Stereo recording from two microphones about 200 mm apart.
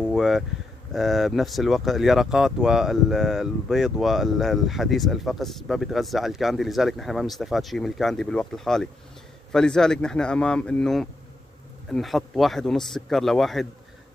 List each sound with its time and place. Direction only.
0.0 s speech: centre (ahead or behind)